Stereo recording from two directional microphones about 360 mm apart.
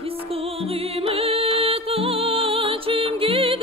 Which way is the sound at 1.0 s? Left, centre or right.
Centre.